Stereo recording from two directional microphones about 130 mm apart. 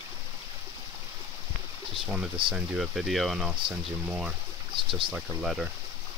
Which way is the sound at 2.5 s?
5° right (ahead or behind).